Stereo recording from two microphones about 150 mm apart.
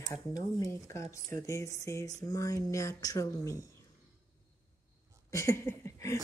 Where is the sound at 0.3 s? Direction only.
20° left (ahead or behind).